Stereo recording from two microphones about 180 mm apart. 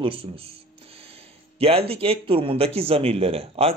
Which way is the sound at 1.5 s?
35° right (ahead or behind).